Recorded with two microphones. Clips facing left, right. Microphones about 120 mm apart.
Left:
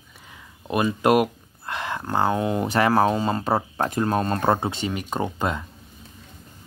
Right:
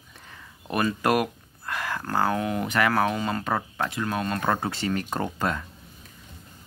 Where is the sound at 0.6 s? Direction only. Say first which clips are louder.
Left 4 dB; 15° left (ahead or behind); by 4.5 s 35° left (ahead or behind).